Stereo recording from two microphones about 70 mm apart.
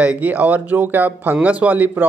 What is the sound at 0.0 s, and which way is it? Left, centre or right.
Speech, right.